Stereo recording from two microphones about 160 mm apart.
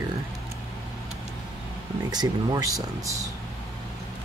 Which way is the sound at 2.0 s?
25° right (ahead or behind).